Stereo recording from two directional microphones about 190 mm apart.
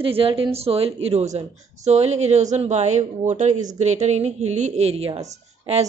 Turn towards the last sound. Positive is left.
turn(degrees=-35)  # may be behind; listen again after turning